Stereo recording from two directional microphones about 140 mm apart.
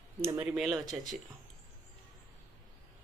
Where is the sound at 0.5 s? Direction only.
Centre (ahead or behind).